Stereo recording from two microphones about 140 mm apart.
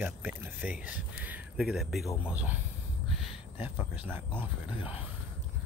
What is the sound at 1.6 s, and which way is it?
Speech, centre (ahead or behind).